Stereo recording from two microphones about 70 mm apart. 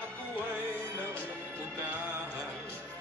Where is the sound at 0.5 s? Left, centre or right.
Right.